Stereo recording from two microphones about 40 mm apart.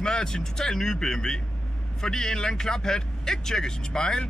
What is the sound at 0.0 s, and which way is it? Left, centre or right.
A man's voice, centre.